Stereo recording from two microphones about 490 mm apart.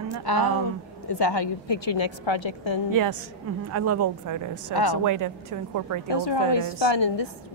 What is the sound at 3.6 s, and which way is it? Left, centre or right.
Speech, right.